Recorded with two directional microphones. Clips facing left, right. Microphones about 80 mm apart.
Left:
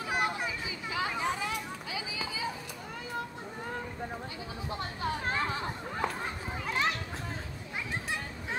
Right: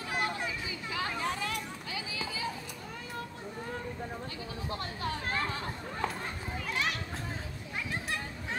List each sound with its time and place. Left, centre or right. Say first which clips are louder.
0.1 s a sound: left 2 dB; centre
4.6 s chatter: left 2 dB; centre
6.6 s children playing: left 3 dB; left